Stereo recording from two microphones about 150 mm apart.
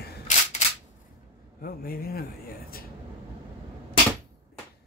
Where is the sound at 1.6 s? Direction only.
75° left (ahead or behind).